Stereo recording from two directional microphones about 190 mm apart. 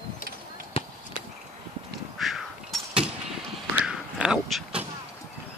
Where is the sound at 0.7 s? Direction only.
30° left (ahead or behind).